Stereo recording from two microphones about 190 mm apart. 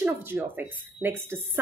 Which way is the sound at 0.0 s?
10° right (ahead or behind).